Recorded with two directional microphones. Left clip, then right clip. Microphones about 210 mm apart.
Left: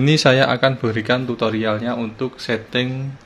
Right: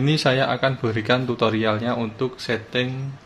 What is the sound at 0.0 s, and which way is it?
Speech, 25° left (ahead or behind).